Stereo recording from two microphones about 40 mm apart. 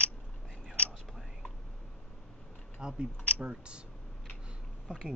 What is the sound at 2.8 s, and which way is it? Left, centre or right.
A woman's voice, centre.